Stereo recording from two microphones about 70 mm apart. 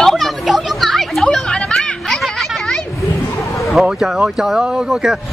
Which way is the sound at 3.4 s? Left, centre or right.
Left.